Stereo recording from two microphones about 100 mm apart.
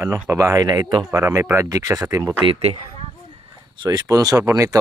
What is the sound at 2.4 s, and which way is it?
Speech, 70° right (ahead or behind).